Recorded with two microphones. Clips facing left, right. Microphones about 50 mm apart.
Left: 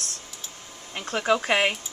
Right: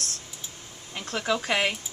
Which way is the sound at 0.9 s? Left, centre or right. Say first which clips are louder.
Left 4 dB; left.